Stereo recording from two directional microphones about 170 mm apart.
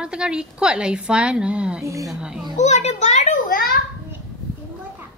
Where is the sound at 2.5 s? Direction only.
40° left (ahead or behind).